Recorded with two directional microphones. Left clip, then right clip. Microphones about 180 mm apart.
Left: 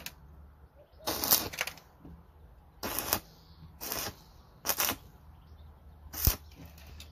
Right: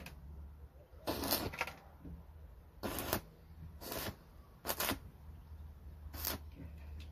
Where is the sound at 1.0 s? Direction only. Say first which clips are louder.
Left 6 dB; 25° left (ahead or behind).